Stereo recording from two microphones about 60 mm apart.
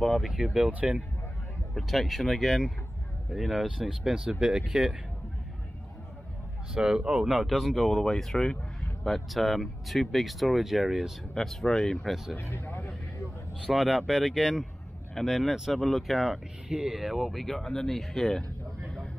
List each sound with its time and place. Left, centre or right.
0.0 s speech: centre
0.7 s speech: right
1.8 s speech: centre
6.7 s speech: centre
7.4 s speech: centre
12.4 s speech: left
13.7 s speech: centre